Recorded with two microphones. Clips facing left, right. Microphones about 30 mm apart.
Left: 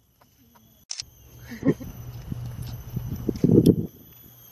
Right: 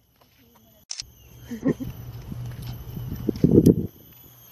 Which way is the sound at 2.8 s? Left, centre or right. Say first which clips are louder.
Left 3 dB; right.